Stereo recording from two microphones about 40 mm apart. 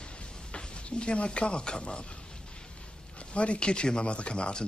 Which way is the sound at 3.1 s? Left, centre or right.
Left.